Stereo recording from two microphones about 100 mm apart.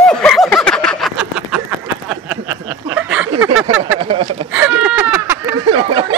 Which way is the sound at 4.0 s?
80° right.